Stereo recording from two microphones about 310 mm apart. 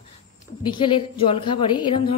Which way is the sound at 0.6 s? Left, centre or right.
Centre.